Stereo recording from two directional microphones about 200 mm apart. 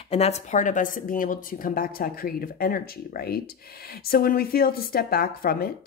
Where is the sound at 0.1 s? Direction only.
30° left (ahead or behind).